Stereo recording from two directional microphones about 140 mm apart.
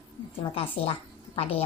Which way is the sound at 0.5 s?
40° left (ahead or behind).